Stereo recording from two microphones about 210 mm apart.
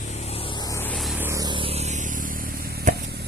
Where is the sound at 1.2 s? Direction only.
15° right (ahead or behind); by 3.3 s 50° right (ahead or behind).